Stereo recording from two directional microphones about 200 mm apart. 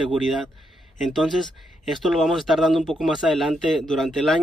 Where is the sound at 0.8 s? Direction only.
Centre (ahead or behind).